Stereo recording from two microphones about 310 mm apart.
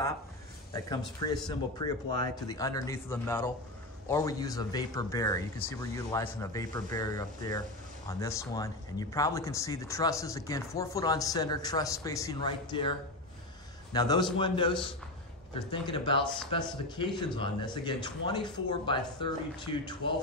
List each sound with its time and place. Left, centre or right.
0.7 s speech: centre
13.9 s speech: centre